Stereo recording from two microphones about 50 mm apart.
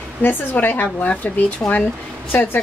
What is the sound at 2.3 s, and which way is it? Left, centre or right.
Speech, left.